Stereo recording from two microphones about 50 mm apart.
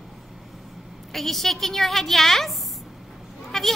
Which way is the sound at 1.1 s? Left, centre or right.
Centre.